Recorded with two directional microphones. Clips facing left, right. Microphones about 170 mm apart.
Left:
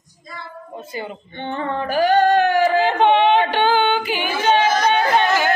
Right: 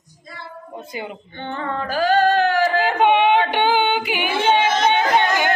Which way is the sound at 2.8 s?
10° right (ahead or behind).